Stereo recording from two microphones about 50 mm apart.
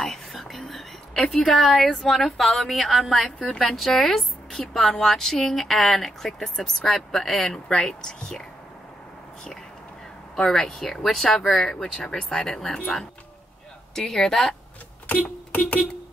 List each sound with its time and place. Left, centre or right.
0.0 s whispering: centre
1.2 s speech: centre
10.3 s speech: centre
11.8 s speech: centre